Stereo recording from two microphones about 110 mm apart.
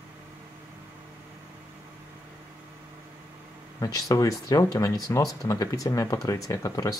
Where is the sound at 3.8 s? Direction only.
30° left (ahead or behind).